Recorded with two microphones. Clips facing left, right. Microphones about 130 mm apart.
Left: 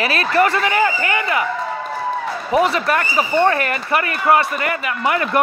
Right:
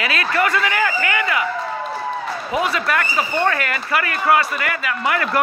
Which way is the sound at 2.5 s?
30° left (ahead or behind).